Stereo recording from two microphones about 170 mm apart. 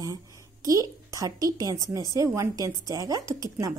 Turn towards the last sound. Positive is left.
turn(degrees=-20)  # may be behind; listen again after turning